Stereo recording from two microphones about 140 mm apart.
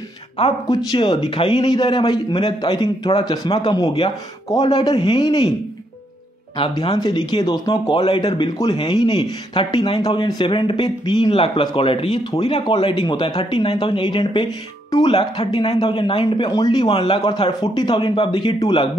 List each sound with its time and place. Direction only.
0.7 s speech: 35° left (ahead or behind)
4.5 s speech: 30° left (ahead or behind)
6.7 s speech: 30° left (ahead or behind)
16.9 s a man's voice: 45° left (ahead or behind)
17.2 s speech: 30° left (ahead or behind)